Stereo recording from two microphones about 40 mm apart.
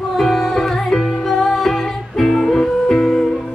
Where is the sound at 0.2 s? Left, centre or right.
Centre.